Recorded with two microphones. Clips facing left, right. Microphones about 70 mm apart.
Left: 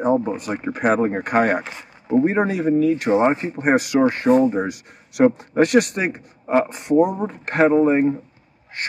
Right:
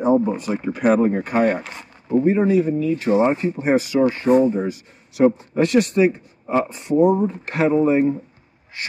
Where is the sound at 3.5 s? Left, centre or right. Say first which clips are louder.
Left 1 dB; left.